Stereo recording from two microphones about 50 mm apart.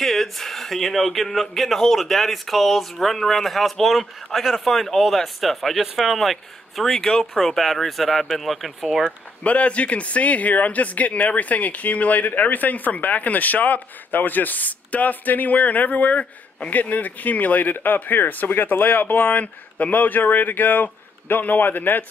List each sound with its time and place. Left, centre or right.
0.0 s speech: centre
9.4 s speech: left